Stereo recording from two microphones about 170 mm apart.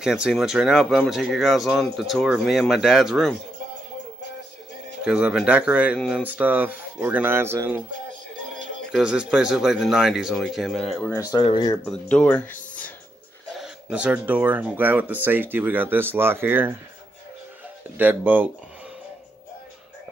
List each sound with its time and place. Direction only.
0.0 s speech: 5° right (ahead or behind)
5.0 s speech: 5° right (ahead or behind)
8.9 s speech: 5° right (ahead or behind)
11.1 s speech: 25° left (ahead or behind)
11.8 s speech: 5° left (ahead or behind)
13.6 s speech: 5° right (ahead or behind)
17.9 s speech: 10° right (ahead or behind)